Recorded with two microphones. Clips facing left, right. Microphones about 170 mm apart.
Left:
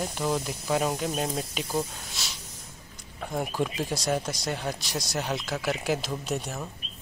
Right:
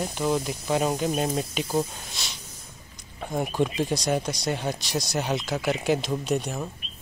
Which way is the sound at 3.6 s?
5° left (ahead or behind).